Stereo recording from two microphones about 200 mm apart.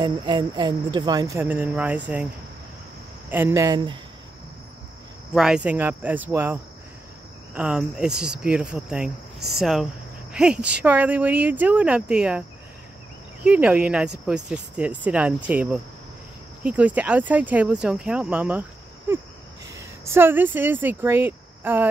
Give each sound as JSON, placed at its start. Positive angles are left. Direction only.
{"t": 0.0, "sound": "speech", "side_deg": -20}
{"t": 3.3, "sound": "speech", "side_deg": -10}
{"t": 5.3, "sound": "speech", "side_deg": -5}